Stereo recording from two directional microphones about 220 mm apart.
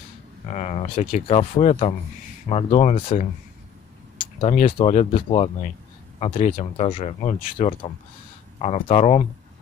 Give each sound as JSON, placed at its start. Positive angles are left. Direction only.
{"t": 0.5, "sound": "speech", "side_deg": 30}
{"t": 4.2, "sound": "tick-tock", "side_deg": 25}
{"t": 4.7, "sound": "speech", "side_deg": 25}